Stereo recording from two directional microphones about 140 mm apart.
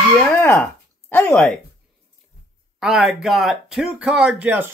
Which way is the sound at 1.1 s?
10° left (ahead or behind).